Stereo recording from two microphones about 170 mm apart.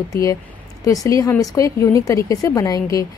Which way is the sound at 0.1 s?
20° left (ahead or behind).